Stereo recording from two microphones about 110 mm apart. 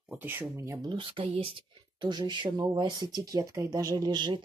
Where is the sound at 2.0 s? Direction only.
45° right (ahead or behind).